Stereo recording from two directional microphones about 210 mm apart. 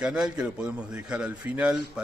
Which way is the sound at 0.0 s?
5° right (ahead or behind).